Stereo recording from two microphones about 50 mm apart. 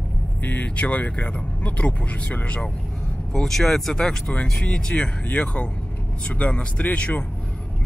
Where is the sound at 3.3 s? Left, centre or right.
Centre.